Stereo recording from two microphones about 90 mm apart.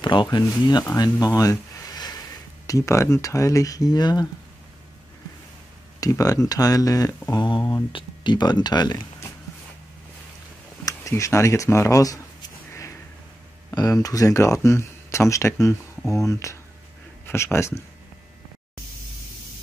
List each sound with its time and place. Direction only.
0.0 s speech: 60° left (ahead or behind)
5.9 s speech: 40° left (ahead or behind)
7.2 s speech: 55° left (ahead or behind)
10.9 s a sound: 35° left (ahead or behind)
14.0 s speech: 40° left (ahead or behind)